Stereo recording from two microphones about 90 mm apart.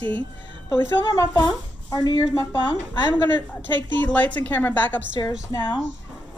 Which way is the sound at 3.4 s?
20° left (ahead or behind).